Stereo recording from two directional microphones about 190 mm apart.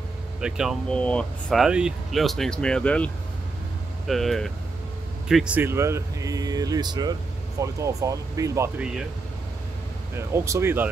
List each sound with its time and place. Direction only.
0.4 s speech: 5° right (ahead or behind)
4.1 s speech: centre (ahead or behind)
10.1 s speech: 15° right (ahead or behind)